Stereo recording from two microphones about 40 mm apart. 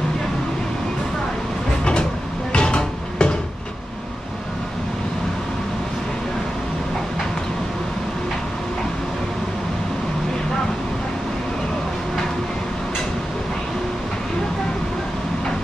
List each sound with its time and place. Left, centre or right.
2.5 s music: left